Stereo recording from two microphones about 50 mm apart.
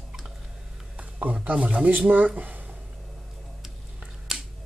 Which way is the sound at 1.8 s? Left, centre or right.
Right.